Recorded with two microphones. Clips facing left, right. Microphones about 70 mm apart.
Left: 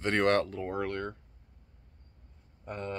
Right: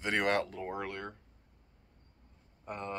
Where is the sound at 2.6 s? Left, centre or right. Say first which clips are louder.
Left 2 dB; centre.